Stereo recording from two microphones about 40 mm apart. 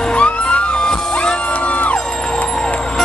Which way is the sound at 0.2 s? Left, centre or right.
Left.